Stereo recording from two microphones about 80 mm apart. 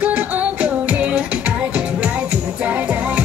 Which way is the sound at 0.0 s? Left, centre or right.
Centre.